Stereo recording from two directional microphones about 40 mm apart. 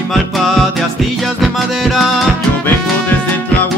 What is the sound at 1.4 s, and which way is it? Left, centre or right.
Music, centre.